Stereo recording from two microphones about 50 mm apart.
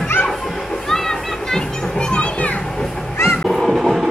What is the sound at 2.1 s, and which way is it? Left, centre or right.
Children playing, left.